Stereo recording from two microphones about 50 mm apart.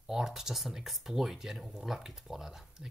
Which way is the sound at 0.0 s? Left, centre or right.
Centre.